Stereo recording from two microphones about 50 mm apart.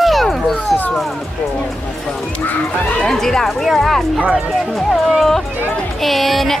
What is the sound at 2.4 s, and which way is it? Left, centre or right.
Speech, left.